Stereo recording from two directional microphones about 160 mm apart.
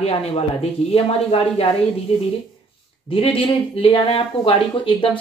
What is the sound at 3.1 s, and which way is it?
A woman's voice, 35° left (ahead or behind).